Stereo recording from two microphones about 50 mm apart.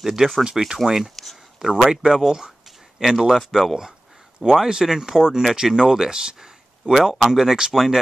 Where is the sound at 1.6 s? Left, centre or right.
Centre.